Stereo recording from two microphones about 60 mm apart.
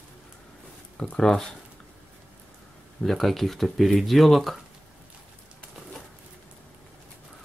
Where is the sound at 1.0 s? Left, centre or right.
Centre.